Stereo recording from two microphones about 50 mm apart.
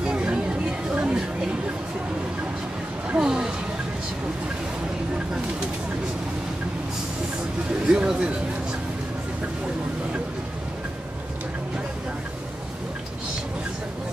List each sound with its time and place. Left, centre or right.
0.0 s chatter: right
3.2 s a sound: centre
7.9 s speech: centre